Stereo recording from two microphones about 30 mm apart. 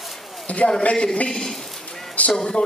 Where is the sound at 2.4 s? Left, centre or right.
Left.